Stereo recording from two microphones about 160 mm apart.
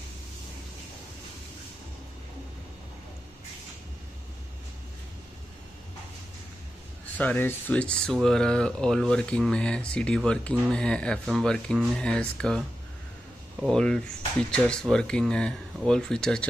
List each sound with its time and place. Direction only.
7.2 s speech: 10° left (ahead or behind)